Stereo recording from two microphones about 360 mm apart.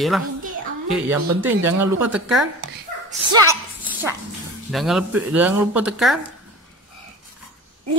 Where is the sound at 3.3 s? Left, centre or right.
Centre.